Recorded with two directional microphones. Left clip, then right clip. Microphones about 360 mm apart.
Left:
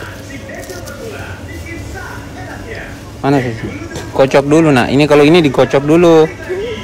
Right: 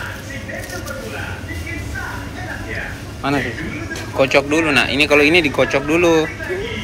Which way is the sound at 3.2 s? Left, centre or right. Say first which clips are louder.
Left 6 dB; left.